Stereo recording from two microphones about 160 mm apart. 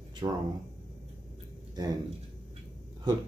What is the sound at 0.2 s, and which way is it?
Speech, 25° right (ahead or behind).